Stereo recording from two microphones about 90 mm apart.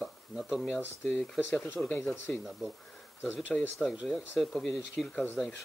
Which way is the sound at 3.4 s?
20° left (ahead or behind).